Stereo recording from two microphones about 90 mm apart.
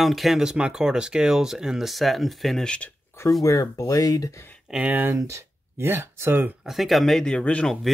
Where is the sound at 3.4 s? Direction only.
35° left (ahead or behind).